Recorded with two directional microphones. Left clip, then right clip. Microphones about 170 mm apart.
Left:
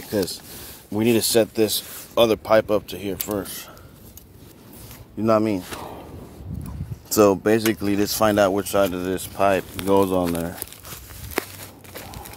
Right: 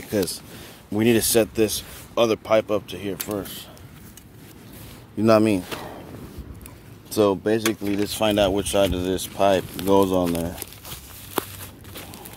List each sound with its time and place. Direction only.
0.9 s speech: 10° left (ahead or behind)
1.7 s speech: 25° left (ahead or behind)
5.2 s speech: centre (ahead or behind)
7.1 s speech: 45° left (ahead or behind)
8.2 s speech: 20° left (ahead or behind)